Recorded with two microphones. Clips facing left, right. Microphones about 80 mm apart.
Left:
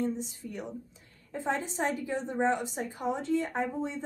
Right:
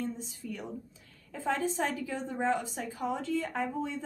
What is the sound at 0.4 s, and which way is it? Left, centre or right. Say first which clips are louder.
A woman's voice: even; left.